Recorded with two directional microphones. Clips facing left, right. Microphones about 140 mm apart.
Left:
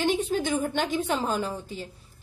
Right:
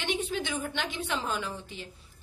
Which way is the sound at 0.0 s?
40° left (ahead or behind).